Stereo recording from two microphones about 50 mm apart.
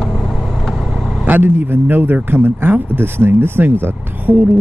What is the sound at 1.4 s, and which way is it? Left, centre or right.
Speech, right.